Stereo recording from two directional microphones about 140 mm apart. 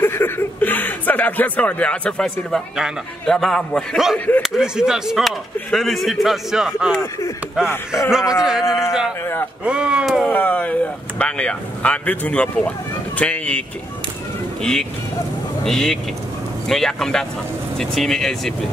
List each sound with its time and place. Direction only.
0.0 s speech: 15° left (ahead or behind); by 7.0 s 5° right (ahead or behind)
7.0 s speech: 25° left (ahead or behind)
8.1 s speech: 5° right (ahead or behind)
9.7 s speech: 5° right (ahead or behind)
10.3 s speech: 10° left (ahead or behind)